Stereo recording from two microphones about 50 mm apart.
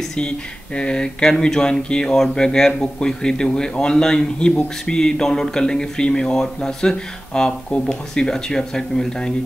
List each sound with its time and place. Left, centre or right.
0.7 s speech: centre